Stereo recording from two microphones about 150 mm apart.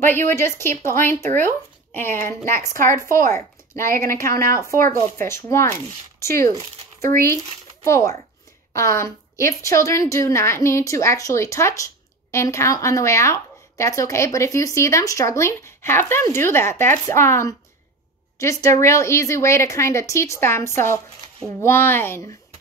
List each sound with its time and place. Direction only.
0.0 s a woman's voice: 15° left (ahead or behind)
7.8 s a woman's voice: 20° left (ahead or behind)